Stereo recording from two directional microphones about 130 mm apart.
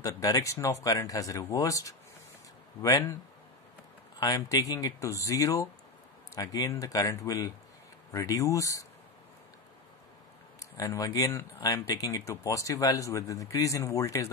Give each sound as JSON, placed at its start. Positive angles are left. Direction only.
{"t": 0.0, "sound": "speech", "side_deg": 25}
{"t": 4.2, "sound": "speech", "side_deg": 25}
{"t": 10.6, "sound": "speech", "side_deg": 25}